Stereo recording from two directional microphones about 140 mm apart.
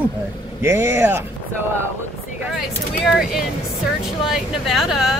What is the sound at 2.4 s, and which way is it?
Speech, centre (ahead or behind).